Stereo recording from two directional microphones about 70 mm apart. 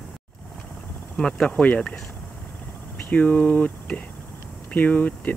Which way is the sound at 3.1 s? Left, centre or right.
Centre.